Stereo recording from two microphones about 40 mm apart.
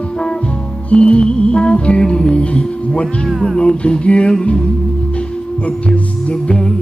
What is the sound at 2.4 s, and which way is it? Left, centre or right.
Music, left.